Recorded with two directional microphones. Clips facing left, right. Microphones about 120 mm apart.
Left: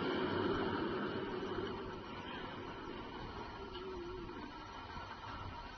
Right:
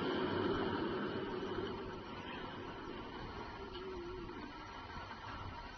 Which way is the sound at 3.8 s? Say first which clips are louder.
Even; centre (ahead or behind).